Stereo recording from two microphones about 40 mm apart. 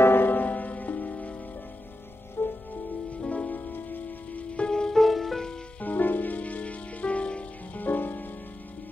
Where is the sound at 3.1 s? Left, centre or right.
Left.